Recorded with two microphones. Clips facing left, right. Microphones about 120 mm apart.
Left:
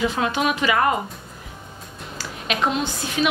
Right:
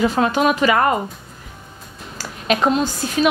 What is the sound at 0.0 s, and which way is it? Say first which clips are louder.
Speech: right 5 dB; 40° right (ahead or behind).